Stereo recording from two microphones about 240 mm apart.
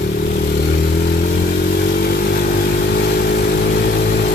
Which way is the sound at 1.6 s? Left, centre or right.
Left.